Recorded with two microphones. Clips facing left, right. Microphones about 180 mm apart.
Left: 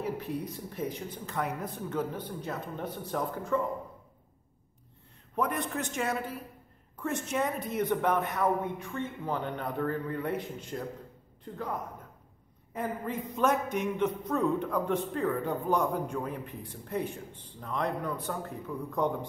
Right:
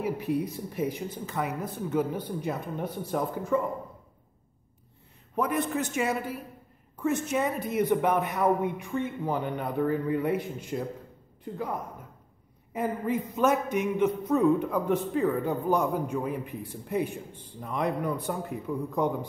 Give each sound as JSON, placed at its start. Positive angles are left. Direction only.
{"t": 0.0, "sound": "a man's voice", "side_deg": -10}
{"t": 5.3, "sound": "a man's voice", "side_deg": -5}
{"t": 12.7, "sound": "a man's voice", "side_deg": -5}